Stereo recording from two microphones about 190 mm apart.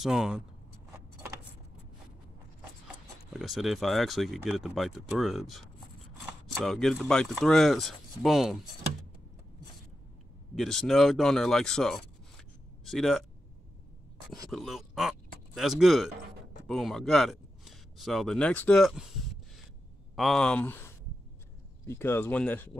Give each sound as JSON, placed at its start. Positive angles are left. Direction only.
{"t": 0.0, "sound": "speech", "side_deg": -5}
{"t": 3.3, "sound": "speech", "side_deg": 0}
{"t": 10.5, "sound": "speech", "side_deg": 0}
{"t": 14.5, "sound": "speech", "side_deg": 0}
{"t": 20.2, "sound": "speech", "side_deg": 0}